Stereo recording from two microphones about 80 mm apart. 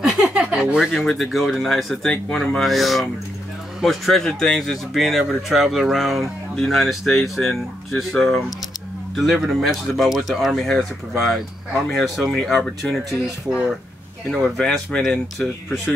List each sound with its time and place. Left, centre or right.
0.0 s a sound: centre
0.9 s speech: centre
14.3 s speech: centre